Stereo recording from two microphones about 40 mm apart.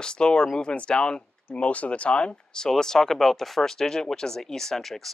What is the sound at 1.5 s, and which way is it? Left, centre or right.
Speech, left.